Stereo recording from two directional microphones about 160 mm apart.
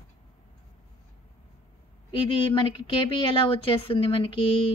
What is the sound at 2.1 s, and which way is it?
A woman's voice, 30° left (ahead or behind).